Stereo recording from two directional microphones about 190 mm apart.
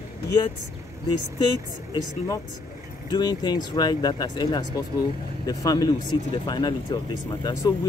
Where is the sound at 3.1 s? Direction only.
20° left (ahead or behind).